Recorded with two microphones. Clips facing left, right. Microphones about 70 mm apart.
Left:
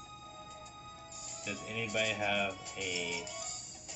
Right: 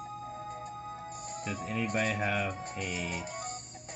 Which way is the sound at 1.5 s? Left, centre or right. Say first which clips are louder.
Right 5 dB; right.